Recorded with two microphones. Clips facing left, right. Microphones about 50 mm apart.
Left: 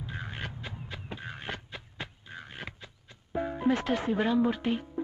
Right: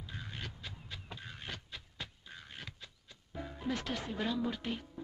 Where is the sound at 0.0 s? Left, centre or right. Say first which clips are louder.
Left 7 dB; left.